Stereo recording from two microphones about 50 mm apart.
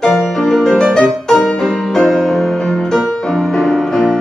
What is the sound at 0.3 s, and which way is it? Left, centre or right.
Music, centre.